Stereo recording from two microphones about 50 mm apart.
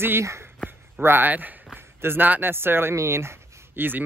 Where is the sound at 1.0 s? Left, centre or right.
Right.